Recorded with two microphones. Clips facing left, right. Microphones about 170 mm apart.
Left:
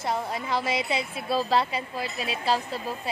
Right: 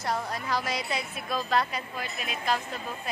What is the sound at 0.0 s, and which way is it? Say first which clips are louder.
A woman's voice: left 2 dB; 25° left (ahead or behind).